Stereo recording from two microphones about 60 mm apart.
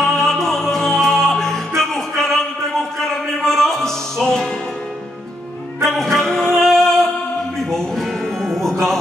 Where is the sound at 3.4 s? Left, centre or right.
Centre.